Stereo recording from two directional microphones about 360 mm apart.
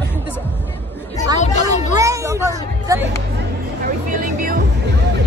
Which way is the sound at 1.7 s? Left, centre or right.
Centre.